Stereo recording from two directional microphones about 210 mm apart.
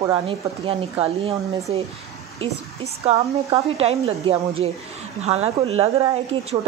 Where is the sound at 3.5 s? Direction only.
30° right (ahead or behind).